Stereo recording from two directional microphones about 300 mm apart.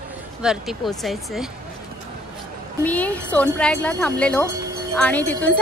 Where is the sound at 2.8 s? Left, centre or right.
Centre.